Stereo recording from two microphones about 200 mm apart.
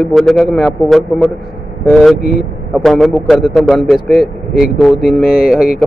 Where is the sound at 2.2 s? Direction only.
50° left (ahead or behind).